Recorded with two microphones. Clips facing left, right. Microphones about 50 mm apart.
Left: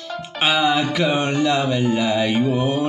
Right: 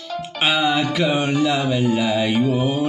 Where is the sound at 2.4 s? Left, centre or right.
Left.